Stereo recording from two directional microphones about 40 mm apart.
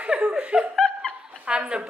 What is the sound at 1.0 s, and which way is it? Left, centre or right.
Dog, right.